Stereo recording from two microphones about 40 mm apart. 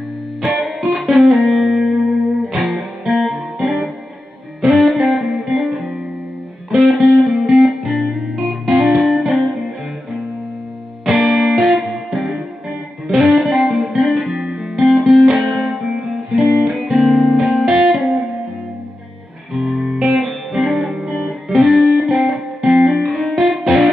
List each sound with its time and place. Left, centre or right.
0.4 s music: centre
11.1 s music: centre
14.4 s music: centre
14.8 s music: centre
19.5 s music: centre
20.0 s music: centre
22.8 s music: centre
23.1 s music: centre